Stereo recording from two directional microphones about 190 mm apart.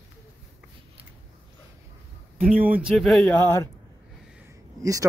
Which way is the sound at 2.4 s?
5° right (ahead or behind).